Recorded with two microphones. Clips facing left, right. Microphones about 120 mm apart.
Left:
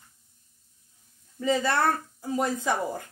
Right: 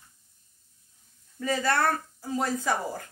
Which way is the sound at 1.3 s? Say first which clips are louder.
Left 2 dB; 20° left (ahead or behind).